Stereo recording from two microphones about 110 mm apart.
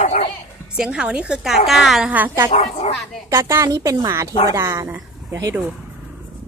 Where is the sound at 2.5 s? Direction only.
70° left (ahead or behind).